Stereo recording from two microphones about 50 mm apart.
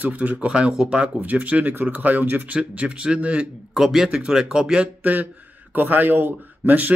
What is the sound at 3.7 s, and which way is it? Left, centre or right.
Speech, centre.